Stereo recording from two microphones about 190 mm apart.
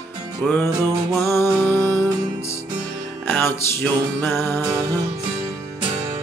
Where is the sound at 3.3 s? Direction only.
10° left (ahead or behind).